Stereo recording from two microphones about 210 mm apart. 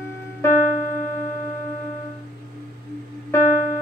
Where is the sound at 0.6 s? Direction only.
40° left (ahead or behind).